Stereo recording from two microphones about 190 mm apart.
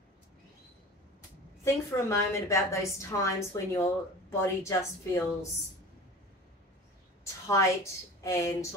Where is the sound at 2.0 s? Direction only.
15° left (ahead or behind).